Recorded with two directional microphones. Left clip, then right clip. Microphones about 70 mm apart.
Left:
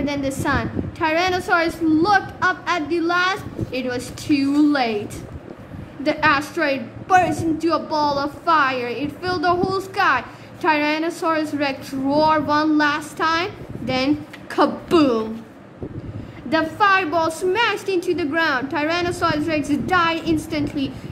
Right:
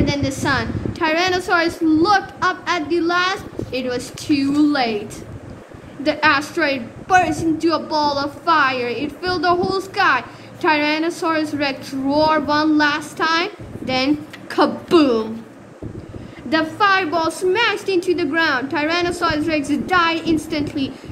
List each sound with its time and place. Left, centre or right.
0.0 s a woman's voice: left
6.0 s a woman's voice: left
16.4 s a woman's voice: left